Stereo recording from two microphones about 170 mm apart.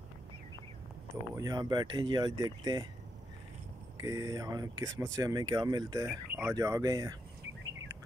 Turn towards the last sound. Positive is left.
turn(degrees=-20)  # may be behind; listen again after turning